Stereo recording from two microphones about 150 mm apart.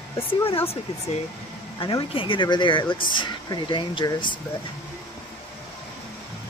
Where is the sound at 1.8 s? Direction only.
35° left (ahead or behind).